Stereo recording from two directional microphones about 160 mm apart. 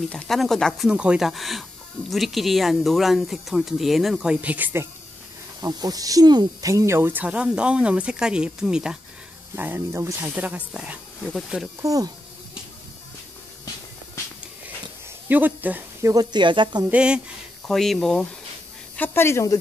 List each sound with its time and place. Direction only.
0.1 s speech: centre (ahead or behind)
5.6 s speech: 25° right (ahead or behind); by 11.7 s centre (ahead or behind)
11.8 s speech: 20° right (ahead or behind)
15.2 s speech: 10° right (ahead or behind); by 16.8 s 30° right (ahead or behind)
16.9 s speech: 5° right (ahead or behind)
18.9 s a woman's voice: 15° left (ahead or behind)